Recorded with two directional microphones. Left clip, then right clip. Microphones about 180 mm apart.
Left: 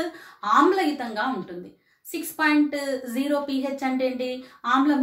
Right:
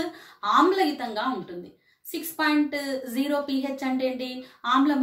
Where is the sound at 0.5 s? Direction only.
20° left (ahead or behind).